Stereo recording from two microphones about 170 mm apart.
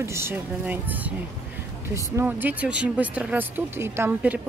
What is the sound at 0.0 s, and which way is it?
Speech, 15° right (ahead or behind).